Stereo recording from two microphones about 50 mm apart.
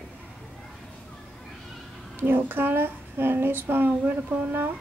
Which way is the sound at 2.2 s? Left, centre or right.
Right.